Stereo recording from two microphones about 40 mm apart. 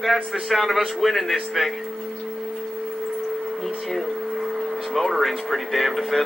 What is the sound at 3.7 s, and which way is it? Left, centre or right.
Speech, centre.